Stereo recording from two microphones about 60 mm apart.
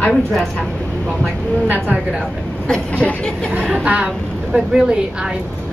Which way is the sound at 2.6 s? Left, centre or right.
Centre.